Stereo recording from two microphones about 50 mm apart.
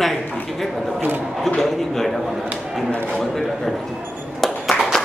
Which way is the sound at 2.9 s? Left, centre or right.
Left.